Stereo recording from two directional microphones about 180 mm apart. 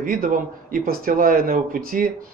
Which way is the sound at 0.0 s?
50° right (ahead or behind).